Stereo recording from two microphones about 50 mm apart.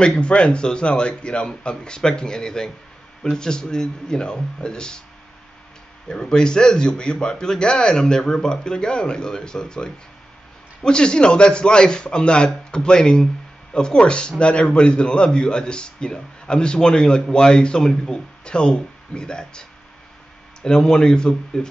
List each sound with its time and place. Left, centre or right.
0.0 s a man's voice: centre
6.0 s a man's voice: centre
20.6 s a man's voice: centre